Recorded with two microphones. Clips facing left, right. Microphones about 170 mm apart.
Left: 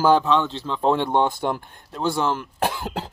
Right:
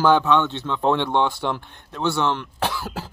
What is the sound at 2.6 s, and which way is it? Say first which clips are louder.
Speech: left 1 dB; 55° left (ahead or behind).